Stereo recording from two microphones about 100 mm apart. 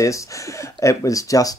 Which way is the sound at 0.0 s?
30° left (ahead or behind).